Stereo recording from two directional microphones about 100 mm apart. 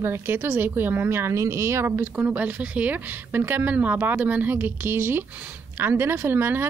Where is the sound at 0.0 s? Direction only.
25° right (ahead or behind).